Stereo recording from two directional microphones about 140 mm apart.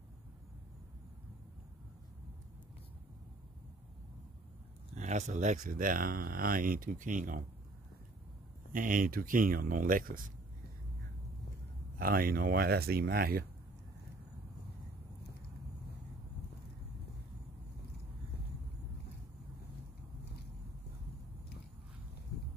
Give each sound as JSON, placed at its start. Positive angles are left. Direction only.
{"t": 4.9, "sound": "speech", "side_deg": -55}
{"t": 8.7, "sound": "speech", "side_deg": -80}
{"t": 12.0, "sound": "speech", "side_deg": -90}